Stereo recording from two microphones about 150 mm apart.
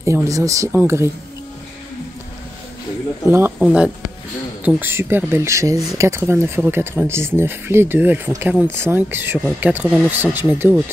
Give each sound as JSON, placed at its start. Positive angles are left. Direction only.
{"t": 0.0, "sound": "speech", "side_deg": -20}
{"t": 3.3, "sound": "speech", "side_deg": -15}
{"t": 3.5, "sound": "speech", "side_deg": -5}